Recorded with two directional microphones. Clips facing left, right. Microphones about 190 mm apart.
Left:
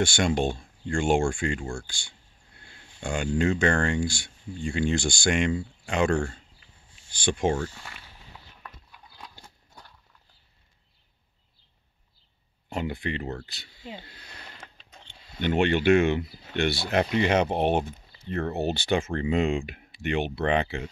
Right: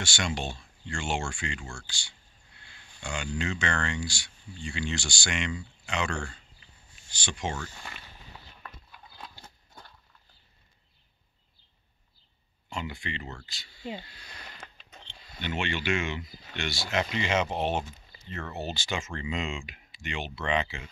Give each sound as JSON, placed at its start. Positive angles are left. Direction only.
{"t": 0.0, "sound": "speech", "side_deg": 50}
{"t": 12.6, "sound": "speech", "side_deg": 55}
{"t": 15.4, "sound": "speech", "side_deg": 55}